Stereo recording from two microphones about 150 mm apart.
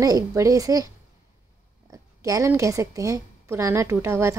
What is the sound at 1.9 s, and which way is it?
A woman's voice, 20° right (ahead or behind).